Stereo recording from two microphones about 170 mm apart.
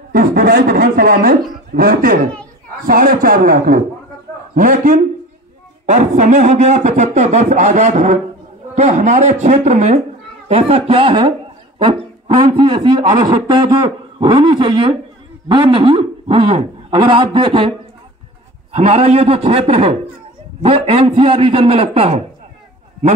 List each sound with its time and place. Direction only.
0.1 s a man's voice: 60° right (ahead or behind); by 22.2 s 35° right (ahead or behind)